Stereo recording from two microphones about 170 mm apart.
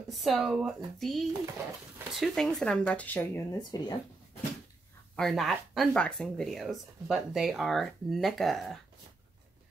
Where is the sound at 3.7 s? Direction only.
20° left (ahead or behind).